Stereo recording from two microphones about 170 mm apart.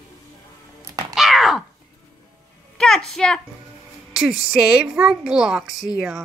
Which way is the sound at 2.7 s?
5° left (ahead or behind).